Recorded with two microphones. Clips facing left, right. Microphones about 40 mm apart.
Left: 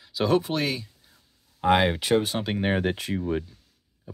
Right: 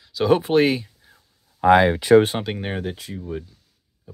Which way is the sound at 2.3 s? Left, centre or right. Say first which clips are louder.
Right 2 dB; right.